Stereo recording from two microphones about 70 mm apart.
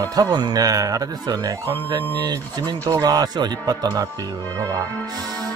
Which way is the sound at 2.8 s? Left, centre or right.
Right.